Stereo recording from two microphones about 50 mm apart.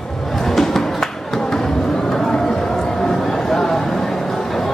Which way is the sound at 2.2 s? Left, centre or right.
Centre.